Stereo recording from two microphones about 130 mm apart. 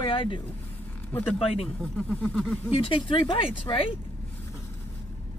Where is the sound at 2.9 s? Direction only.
40° left (ahead or behind).